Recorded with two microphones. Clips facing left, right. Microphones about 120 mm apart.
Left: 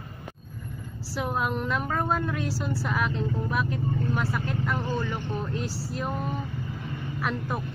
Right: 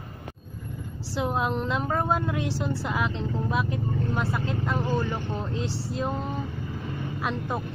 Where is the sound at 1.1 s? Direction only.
20° right (ahead or behind).